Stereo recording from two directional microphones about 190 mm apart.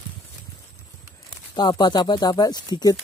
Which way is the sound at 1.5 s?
20° left (ahead or behind).